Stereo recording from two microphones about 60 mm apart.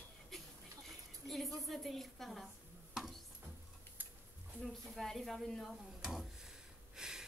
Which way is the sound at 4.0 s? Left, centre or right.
Right.